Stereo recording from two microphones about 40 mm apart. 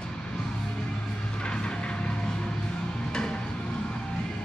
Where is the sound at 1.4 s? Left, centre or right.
Left.